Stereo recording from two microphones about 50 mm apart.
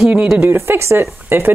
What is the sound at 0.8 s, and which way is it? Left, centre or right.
Speech, right.